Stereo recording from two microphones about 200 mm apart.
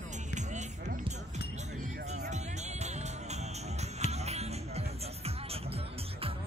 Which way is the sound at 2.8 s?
35° right (ahead or behind).